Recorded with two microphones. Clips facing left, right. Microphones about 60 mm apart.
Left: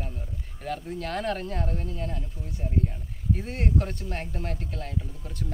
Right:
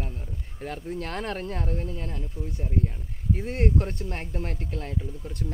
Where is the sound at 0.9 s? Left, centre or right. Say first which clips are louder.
Left 2 dB; right.